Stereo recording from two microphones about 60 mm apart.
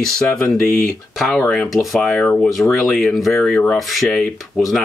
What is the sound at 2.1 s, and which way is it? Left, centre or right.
Speech, centre.